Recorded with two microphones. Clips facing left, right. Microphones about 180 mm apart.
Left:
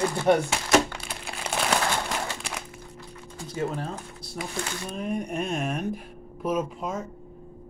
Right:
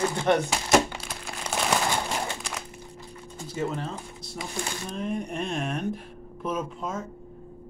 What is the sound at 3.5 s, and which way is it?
Speech, 5° left (ahead or behind).